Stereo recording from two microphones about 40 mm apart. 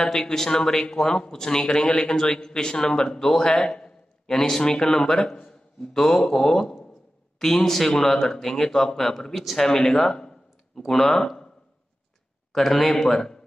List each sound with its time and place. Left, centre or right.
0.0 s a man's voice: centre
12.5 s a man's voice: centre